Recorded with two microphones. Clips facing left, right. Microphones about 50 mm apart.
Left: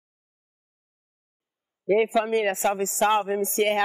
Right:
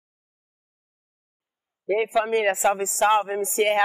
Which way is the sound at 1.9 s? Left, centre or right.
Centre.